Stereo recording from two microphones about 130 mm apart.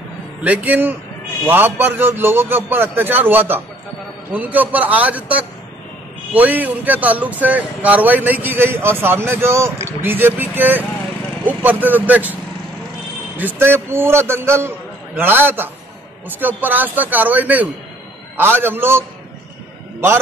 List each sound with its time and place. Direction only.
0.4 s speech: 10° right (ahead or behind)
13.4 s speech: 15° right (ahead or behind)